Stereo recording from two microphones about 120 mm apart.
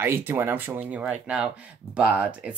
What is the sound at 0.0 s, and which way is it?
Speech, 15° right (ahead or behind).